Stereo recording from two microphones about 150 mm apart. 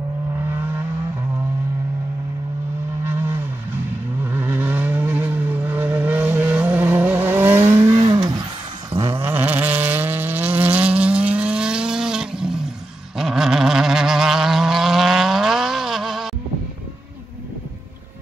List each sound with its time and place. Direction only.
3.0 s vehicle: 15° right (ahead or behind)
9.2 s vehicle: 10° right (ahead or behind)